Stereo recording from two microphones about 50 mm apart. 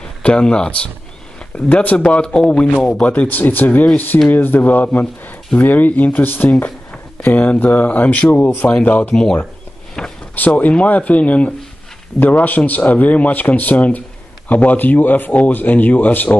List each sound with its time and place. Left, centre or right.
0.2 s a man's voice: centre
1.7 s a man's voice: left
3.3 s speech: left
9.1 s speech: centre
10.0 s a sound: centre
10.3 s speech: left